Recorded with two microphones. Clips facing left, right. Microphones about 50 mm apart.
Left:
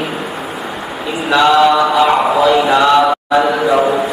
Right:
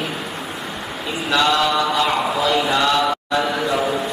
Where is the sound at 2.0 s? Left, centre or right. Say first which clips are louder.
Left 8 dB; left.